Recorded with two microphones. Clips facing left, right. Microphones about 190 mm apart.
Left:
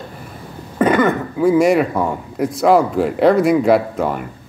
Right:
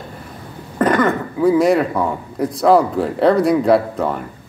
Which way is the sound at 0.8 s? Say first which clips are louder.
Left 1 dB; 5° left (ahead or behind).